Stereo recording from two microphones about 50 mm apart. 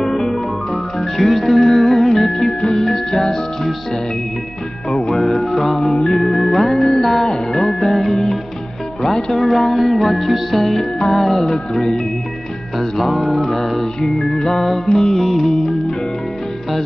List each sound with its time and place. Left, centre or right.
0.0 s music: centre
4.9 s music: centre
5.2 s music: centre